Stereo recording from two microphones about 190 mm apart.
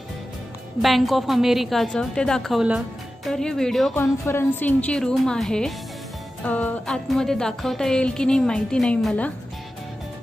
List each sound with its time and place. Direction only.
0.8 s a woman's voice: centre (ahead or behind)
4.0 s a woman's voice: 15° left (ahead or behind)